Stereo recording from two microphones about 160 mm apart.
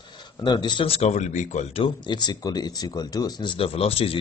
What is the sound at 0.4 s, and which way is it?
Speech, 30° left (ahead or behind).